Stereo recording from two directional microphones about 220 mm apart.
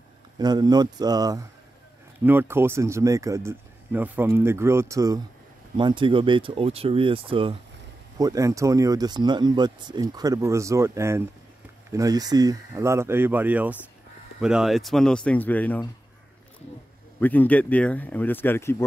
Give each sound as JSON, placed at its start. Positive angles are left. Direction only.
{"t": 0.4, "sound": "speech", "side_deg": -20}
{"t": 17.2, "sound": "speech", "side_deg": 10}